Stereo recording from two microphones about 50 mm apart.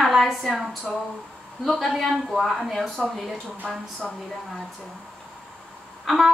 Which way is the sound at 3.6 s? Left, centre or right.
Centre.